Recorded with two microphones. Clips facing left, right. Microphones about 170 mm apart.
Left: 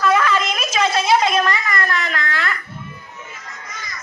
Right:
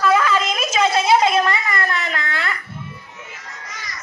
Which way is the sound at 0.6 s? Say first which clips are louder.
Right 1 dB; 25° right (ahead or behind).